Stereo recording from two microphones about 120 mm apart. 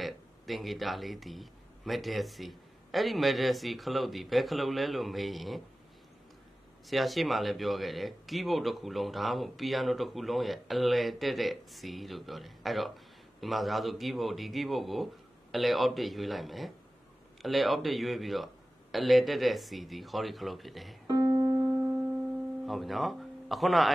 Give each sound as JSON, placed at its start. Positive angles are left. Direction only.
{"t": 0.0, "sound": "speech", "side_deg": 0}
{"t": 6.9, "sound": "speech", "side_deg": 0}
{"t": 21.1, "sound": "music", "side_deg": -30}
{"t": 22.7, "sound": "speech", "side_deg": 0}